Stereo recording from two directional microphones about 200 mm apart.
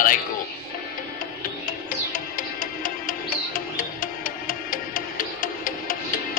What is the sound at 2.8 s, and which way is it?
Music, 45° left (ahead or behind).